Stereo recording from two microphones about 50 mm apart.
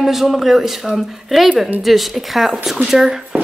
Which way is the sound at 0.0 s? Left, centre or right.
Centre.